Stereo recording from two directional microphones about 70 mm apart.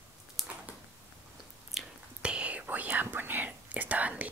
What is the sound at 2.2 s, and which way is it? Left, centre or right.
Whispering, centre.